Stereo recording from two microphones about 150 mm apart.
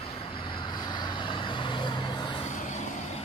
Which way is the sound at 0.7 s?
30° left (ahead or behind).